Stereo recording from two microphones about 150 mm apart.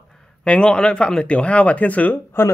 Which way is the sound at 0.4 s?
5° left (ahead or behind).